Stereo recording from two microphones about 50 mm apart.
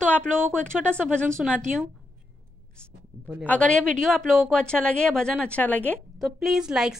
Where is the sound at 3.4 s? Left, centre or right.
Left.